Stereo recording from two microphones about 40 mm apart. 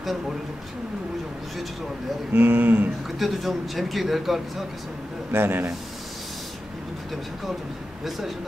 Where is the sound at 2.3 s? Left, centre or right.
Right.